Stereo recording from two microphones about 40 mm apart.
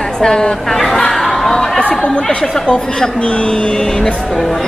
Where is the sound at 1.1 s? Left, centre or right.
Centre.